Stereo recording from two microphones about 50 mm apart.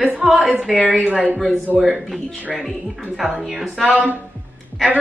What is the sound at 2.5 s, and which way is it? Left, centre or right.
A woman's voice, centre.